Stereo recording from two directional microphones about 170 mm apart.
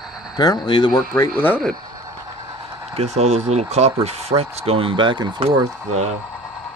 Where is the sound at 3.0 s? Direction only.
40° right (ahead or behind).